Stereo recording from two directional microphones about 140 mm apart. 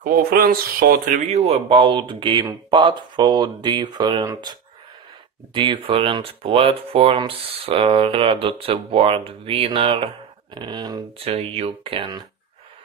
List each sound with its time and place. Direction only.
0.0 s speech: 90° right; by 4.3 s 30° right (ahead or behind)
5.5 s speech: 35° right (ahead or behind)